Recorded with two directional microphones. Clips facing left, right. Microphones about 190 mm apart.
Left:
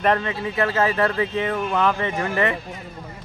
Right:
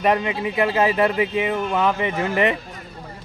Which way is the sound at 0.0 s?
15° right (ahead or behind).